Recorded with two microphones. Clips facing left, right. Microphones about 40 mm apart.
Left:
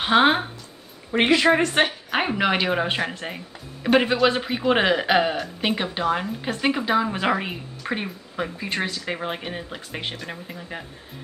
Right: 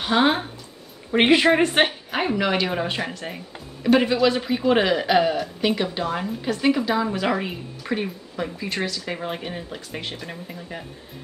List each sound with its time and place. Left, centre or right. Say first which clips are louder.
0.0 s speech: left 2 dB; left
1.1 s a woman's voice: right 1 dB; centre
2.0 s a woman's voice: left 1 dB; left